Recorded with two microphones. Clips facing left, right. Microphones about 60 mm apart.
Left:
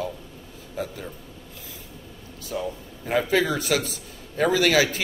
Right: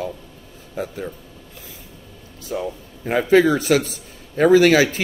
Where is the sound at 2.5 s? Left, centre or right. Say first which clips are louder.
Right 3 dB; right.